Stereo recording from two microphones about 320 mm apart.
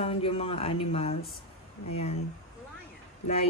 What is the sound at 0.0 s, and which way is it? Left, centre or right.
Speech, centre.